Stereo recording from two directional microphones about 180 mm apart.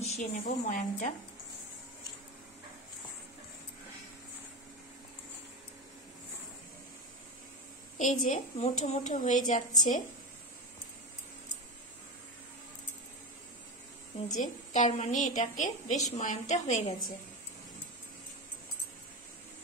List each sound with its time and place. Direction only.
0.0 s a woman's voice: 40° left (ahead or behind)
8.0 s a woman's voice: 45° left (ahead or behind)
14.1 s a woman's voice: 45° left (ahead or behind)